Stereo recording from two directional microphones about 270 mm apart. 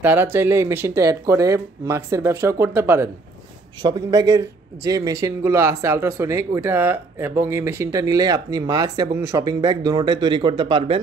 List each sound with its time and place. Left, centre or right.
0.0 s a man's voice: centre